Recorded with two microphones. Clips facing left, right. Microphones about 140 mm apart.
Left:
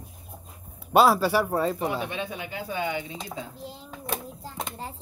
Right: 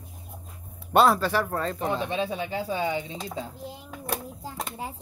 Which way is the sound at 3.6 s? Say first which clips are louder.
Right 1 dB; 15° right (ahead or behind).